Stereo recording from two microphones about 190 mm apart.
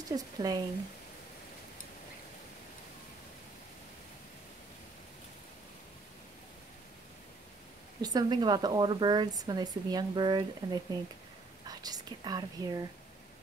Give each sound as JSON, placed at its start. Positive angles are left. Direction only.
{"t": 0.1, "sound": "speech", "side_deg": -20}
{"t": 8.0, "sound": "speech", "side_deg": -20}